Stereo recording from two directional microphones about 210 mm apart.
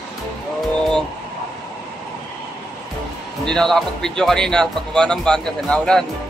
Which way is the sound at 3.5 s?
Centre (ahead or behind).